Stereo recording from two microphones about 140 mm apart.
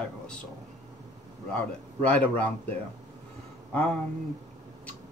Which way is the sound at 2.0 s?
10° left (ahead or behind).